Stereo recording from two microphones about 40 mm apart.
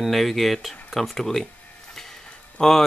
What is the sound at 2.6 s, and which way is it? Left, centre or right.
Speech, centre.